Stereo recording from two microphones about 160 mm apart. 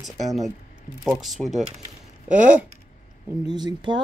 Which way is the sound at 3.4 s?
25° right (ahead or behind).